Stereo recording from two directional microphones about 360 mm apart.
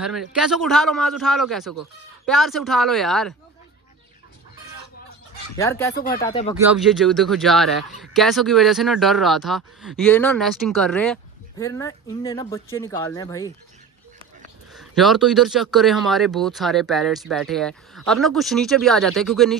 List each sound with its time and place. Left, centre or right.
0.0 s speech: centre
5.6 s speech: centre
6.7 s speech: centre
14.7 s speech: centre